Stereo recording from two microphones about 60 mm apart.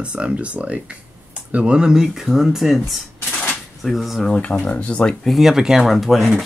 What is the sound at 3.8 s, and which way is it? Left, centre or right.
Speech, centre.